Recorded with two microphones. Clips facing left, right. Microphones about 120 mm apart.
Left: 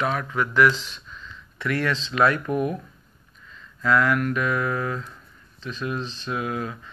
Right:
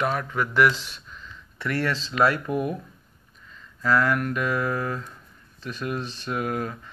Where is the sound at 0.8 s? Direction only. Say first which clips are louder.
Left 1 dB; 50° right (ahead or behind).